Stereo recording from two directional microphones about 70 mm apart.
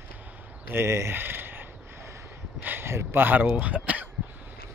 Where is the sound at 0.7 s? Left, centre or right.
Right.